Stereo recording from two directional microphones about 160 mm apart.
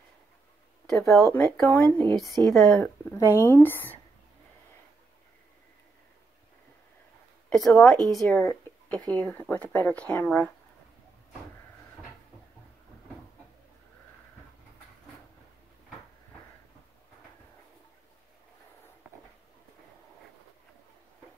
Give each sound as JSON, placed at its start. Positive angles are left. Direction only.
{"t": 0.8, "sound": "speech", "side_deg": 0}
{"t": 1.3, "sound": "speech", "side_deg": 10}
{"t": 2.1, "sound": "speech", "side_deg": 0}
{"t": 2.4, "sound": "speech", "side_deg": 20}
{"t": 7.4, "sound": "a woman's voice", "side_deg": 5}
{"t": 8.4, "sound": "speech", "side_deg": 10}